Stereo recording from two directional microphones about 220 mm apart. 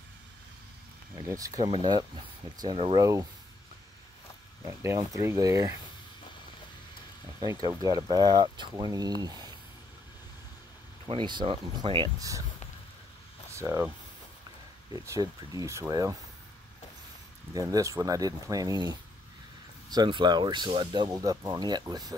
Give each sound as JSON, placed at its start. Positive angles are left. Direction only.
{"t": 1.1, "sound": "speech", "side_deg": -15}
{"t": 4.8, "sound": "speech", "side_deg": -15}
{"t": 7.4, "sound": "speech", "side_deg": -15}
{"t": 11.1, "sound": "speech", "side_deg": -20}
{"t": 13.6, "sound": "speech", "side_deg": -10}
{"t": 17.6, "sound": "speech", "side_deg": -15}